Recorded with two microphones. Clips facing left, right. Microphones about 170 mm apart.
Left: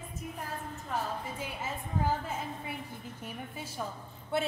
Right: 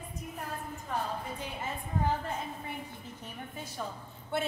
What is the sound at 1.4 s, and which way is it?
A woman's voice, 5° left (ahead or behind).